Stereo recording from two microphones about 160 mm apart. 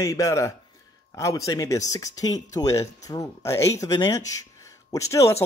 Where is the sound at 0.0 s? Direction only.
20° left (ahead or behind).